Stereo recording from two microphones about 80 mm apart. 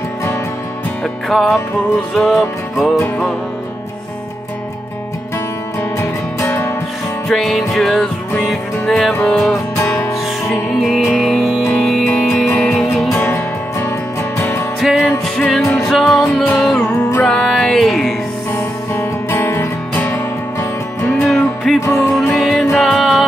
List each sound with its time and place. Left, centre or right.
1.3 s music: centre
5.9 s music: left
7.2 s music: centre
12.4 s music: left
12.7 s music: centre
13.2 s music: left
14.8 s music: centre
18.9 s music: left
21.2 s music: centre